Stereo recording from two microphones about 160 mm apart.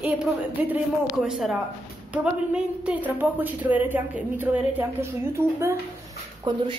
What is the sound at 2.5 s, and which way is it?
A woman's voice, 10° right (ahead or behind).